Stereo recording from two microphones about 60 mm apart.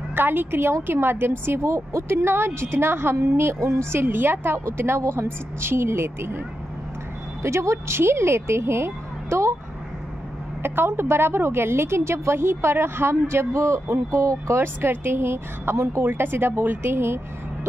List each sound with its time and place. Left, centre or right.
0.1 s a woman's voice: right
4.0 s a woman's voice: right
7.4 s a woman's voice: right
10.6 s a woman's voice: right
14.6 s a woman's voice: right